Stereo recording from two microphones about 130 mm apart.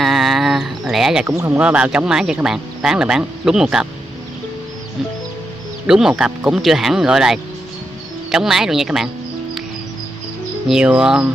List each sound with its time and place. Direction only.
0.0 s a sound: centre (ahead or behind)
1.2 s speech: 20° right (ahead or behind)
1.6 s speech: 10° right (ahead or behind)
5.9 s speech: 5° right (ahead or behind)
10.7 s music: 5° right (ahead or behind)